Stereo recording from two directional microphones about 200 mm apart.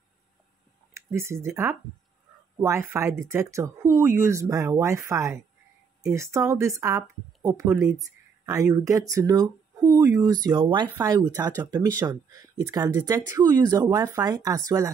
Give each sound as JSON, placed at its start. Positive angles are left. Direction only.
{"t": 0.9, "sound": "speech", "side_deg": -15}